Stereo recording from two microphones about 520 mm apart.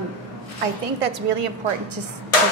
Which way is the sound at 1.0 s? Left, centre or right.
Right.